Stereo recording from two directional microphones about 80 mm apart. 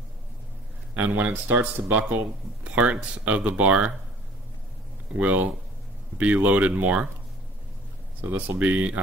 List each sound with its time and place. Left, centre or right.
0.9 s speech: centre
5.1 s speech: centre
8.3 s speech: centre